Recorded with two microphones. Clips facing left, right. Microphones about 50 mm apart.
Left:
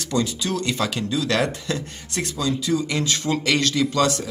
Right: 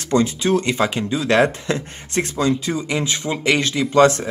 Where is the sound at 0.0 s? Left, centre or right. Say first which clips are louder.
Right 6 dB; right.